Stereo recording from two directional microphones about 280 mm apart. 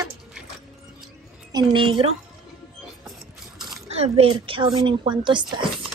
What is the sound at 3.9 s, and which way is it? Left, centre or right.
A woman's voice, right.